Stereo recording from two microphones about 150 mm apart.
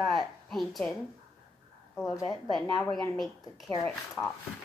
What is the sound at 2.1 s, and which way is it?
A woman's voice, 25° left (ahead or behind).